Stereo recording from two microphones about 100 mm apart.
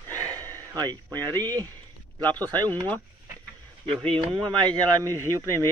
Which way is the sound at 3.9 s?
10° left (ahead or behind).